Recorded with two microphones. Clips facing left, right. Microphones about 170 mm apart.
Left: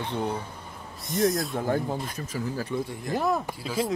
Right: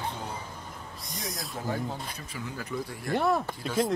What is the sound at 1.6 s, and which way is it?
Speech, 45° left (ahead or behind).